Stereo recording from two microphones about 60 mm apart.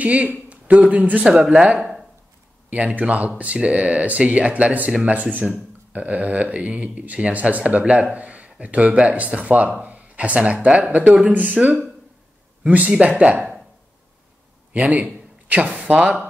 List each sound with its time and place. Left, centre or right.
0.0 s speech: right; by 2.0 s centre
2.7 s speech: right
14.7 s a sound: right
15.9 s speech: right